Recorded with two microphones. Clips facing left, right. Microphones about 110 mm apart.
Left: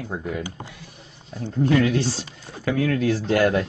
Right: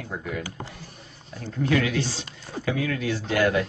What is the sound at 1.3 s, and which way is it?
Speech, 30° left (ahead or behind).